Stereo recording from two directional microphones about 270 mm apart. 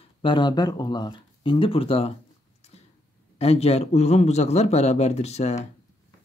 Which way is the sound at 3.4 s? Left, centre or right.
Left.